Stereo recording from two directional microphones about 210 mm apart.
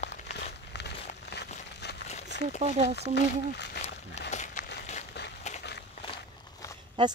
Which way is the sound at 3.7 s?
30° left (ahead or behind).